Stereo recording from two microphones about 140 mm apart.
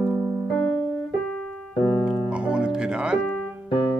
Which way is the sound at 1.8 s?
10° left (ahead or behind).